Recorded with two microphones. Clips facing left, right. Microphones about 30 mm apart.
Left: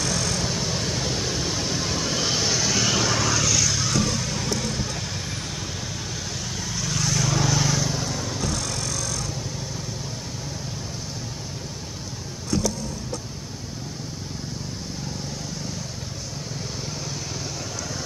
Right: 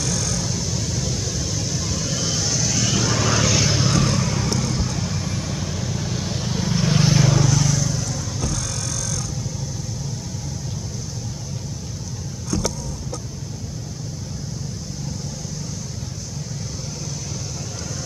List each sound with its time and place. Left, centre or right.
0.0 s vehicle: left; by 3.2 s centre
3.3 s vehicle: centre
4.6 s vehicle: left
6.6 s vehicle: right
7.3 s vehicle: centre